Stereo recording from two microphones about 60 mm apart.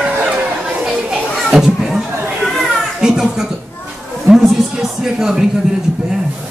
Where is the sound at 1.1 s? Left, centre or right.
Centre.